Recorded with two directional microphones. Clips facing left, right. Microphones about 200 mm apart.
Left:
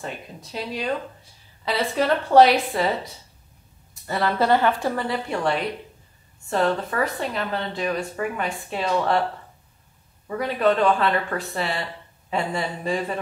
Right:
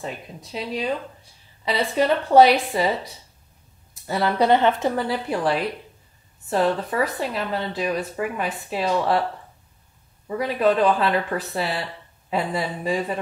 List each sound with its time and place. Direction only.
0.0 s a woman's voice: centre (ahead or behind)
4.1 s a woman's voice: centre (ahead or behind)
4.4 s a woman's voice: 20° right (ahead or behind)
4.9 s a woman's voice: centre (ahead or behind)
10.2 s a woman's voice: centre (ahead or behind)